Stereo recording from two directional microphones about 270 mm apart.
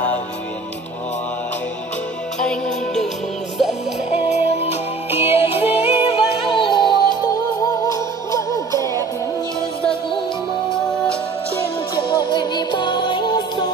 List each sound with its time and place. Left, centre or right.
2.4 s music: centre
4.1 s music: left
5.1 s music: centre
5.7 s music: left
12.1 s music: centre